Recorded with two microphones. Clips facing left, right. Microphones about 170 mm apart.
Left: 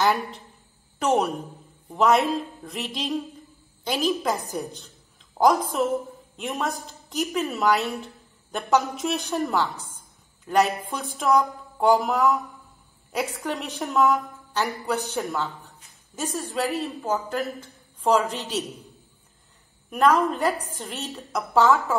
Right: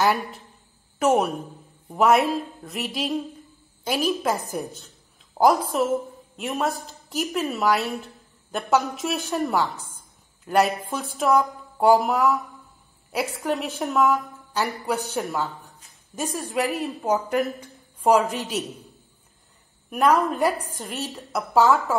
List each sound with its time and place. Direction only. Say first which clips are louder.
0.0 s a woman's voice: right 1 dB; centre (ahead or behind)
5.4 s a woman's voice: right 1 dB; centre (ahead or behind)
9.9 s a sound: even; 5° right (ahead or behind)
10.9 s a woman's voice: right 1 dB; 5° right (ahead or behind)
20.6 s a woman's voice: right 2 dB; 10° right (ahead or behind)